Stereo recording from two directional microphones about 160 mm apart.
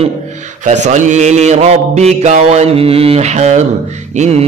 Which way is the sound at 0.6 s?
50° right (ahead or behind).